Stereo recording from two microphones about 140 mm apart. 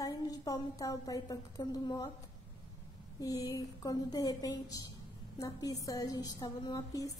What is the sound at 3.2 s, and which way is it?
Speech, 25° left (ahead or behind).